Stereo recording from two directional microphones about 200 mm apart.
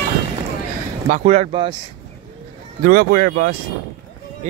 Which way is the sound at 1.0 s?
35° right (ahead or behind).